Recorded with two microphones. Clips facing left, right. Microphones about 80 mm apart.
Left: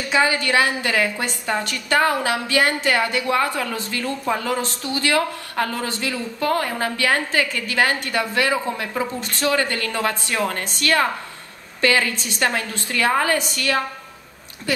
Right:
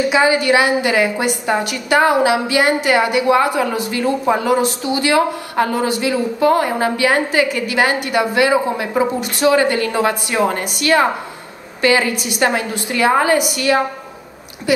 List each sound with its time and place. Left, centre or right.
0.1 s speech: centre